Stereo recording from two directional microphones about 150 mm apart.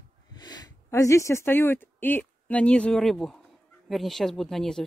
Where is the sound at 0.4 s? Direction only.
25° left (ahead or behind).